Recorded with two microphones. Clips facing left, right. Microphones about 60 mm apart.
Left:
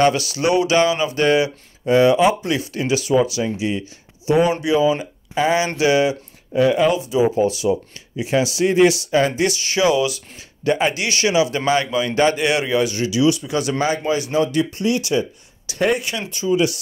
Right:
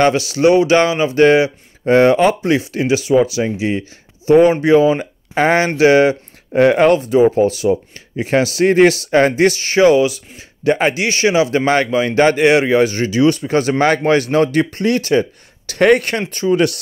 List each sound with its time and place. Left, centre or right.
0.0 s a man's voice: right
2.5 s a man's voice: right
5.8 s a man's voice: right
6.5 s speech: right
7.0 s a man's voice: right
13.8 s speech: right